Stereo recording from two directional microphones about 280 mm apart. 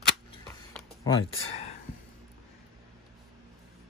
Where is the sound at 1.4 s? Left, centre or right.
Left.